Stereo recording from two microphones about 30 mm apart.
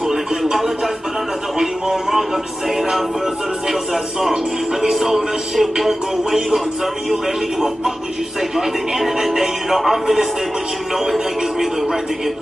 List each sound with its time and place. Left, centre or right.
0.1 s a sound: centre
1.6 s music: centre
3.6 s music: centre
8.4 s music: centre